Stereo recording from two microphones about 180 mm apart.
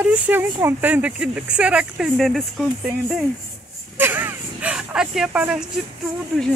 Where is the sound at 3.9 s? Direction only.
10° right (ahead or behind).